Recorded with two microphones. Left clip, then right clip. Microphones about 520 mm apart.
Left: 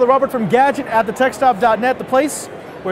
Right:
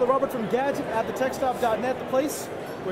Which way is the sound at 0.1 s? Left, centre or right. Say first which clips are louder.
Left 10 dB; left.